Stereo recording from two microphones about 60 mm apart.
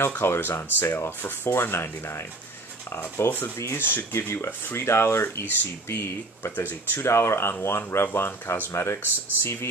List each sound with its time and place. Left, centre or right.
0.2 s speech: left
4.5 s speech: left
4.8 s speech: left
7.0 s speech: left